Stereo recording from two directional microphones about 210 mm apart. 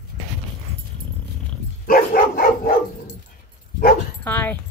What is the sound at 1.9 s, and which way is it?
Dog, 45° left (ahead or behind).